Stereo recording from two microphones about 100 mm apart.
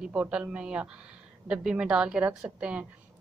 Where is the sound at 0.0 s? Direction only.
10° right (ahead or behind).